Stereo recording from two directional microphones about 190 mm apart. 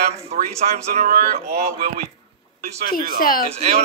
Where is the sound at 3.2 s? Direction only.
50° left (ahead or behind).